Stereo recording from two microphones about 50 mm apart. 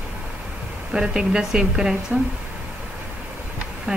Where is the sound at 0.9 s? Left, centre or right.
Centre.